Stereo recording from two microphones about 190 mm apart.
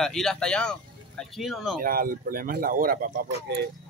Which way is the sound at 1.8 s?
50° right (ahead or behind).